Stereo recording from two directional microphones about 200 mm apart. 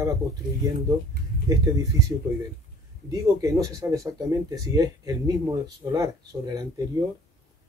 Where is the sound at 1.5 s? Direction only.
15° right (ahead or behind).